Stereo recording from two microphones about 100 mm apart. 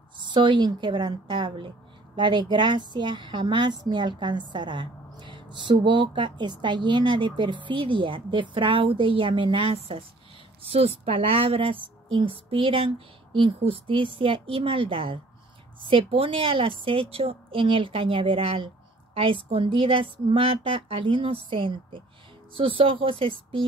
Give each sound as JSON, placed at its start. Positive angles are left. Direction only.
{"t": 0.2, "sound": "a woman's voice", "side_deg": -50}